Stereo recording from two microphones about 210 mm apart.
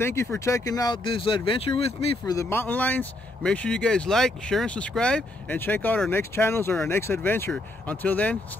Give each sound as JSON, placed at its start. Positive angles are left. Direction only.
{"t": 0.0, "sound": "speech", "side_deg": 15}
{"t": 2.3, "sound": "speech", "side_deg": 10}